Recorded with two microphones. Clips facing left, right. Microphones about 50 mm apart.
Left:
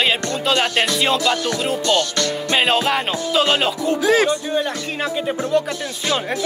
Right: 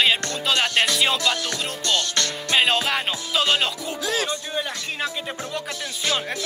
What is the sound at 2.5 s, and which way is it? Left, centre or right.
Music, centre.